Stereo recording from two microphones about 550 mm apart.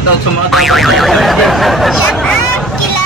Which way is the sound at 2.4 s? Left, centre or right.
Left.